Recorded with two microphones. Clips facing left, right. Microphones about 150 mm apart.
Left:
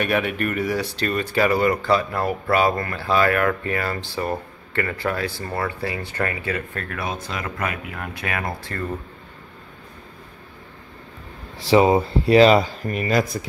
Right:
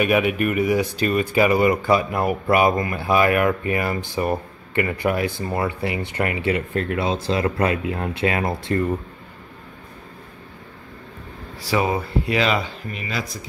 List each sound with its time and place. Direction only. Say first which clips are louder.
0.0 s speech: right 3 dB; 5° right (ahead or behind); by 8.8 s 25° right (ahead or behind)
11.6 s speech: left 6 dB; 25° left (ahead or behind); by 13.4 s 50° left (ahead or behind)